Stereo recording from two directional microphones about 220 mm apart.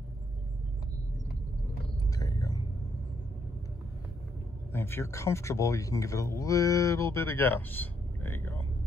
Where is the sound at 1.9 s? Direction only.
15° left (ahead or behind).